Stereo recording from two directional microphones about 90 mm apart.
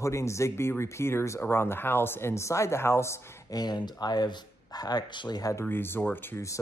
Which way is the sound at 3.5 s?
50° left (ahead or behind).